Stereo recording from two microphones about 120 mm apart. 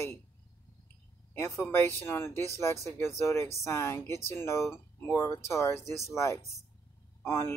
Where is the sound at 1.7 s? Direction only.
20° left (ahead or behind).